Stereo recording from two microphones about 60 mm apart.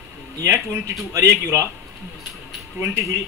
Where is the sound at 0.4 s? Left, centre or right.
Right.